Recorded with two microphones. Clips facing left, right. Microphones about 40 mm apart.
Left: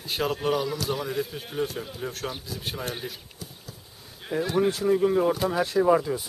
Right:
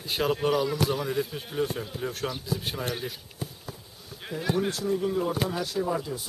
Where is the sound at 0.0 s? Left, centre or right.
Centre.